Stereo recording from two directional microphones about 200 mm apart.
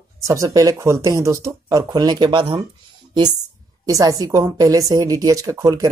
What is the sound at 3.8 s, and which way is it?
A woman's voice, 15° right (ahead or behind).